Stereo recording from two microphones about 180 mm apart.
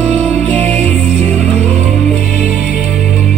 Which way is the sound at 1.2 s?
35° right (ahead or behind).